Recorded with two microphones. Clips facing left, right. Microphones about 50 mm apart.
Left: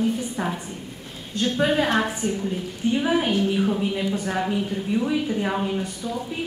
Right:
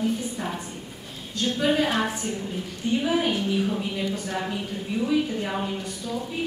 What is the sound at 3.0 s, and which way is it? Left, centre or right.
A woman's voice, centre.